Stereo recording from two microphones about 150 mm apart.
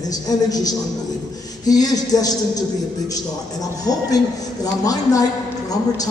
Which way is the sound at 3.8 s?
25° left (ahead or behind).